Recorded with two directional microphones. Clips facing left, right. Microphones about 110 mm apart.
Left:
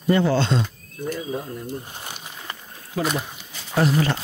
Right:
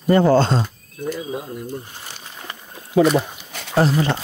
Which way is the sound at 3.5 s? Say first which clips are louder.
Right 4 dB; 70° right (ahead or behind).